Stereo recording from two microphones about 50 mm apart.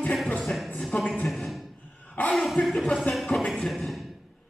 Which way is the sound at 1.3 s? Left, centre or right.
Centre.